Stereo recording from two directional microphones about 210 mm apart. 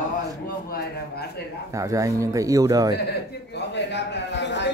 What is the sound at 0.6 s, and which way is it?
Speech, 50° left (ahead or behind).